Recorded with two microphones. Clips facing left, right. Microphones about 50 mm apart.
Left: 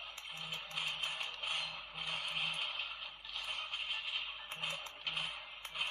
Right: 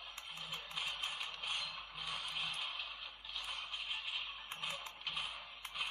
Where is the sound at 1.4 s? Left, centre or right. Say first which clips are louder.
Left 2 dB; left.